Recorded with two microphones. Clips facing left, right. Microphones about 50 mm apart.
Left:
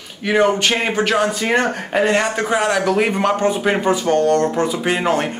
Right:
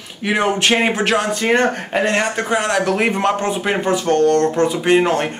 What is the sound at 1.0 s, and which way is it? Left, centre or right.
Speech, centre.